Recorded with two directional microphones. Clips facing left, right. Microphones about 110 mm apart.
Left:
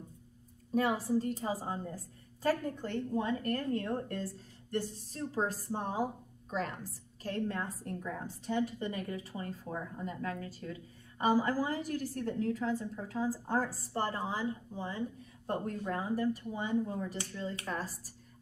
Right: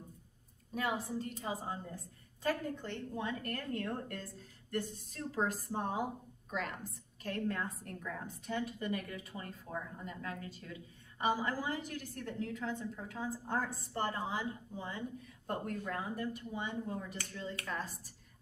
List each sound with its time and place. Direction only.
0.7 s a woman's voice: 35° left (ahead or behind)